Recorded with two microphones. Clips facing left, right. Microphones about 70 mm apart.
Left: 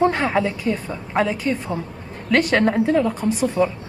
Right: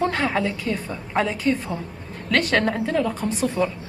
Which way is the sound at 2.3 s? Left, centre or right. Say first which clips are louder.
Left 4 dB; centre.